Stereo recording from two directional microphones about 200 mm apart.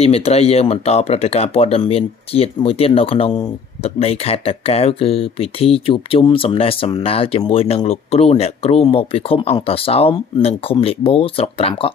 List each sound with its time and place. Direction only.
0.0 s speech: 30° left (ahead or behind)